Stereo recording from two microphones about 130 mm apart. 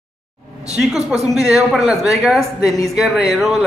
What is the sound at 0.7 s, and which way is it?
A woman's voice, 5° right (ahead or behind).